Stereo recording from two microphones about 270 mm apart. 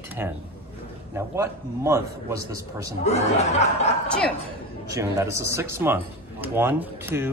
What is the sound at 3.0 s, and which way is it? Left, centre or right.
Speech, left.